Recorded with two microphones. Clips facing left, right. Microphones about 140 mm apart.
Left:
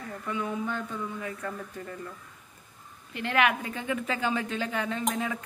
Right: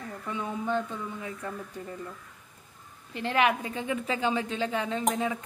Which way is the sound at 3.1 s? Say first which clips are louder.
Right 1 dB; 30° right (ahead or behind).